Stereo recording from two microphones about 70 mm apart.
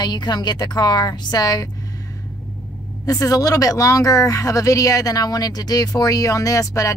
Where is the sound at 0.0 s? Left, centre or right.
Left.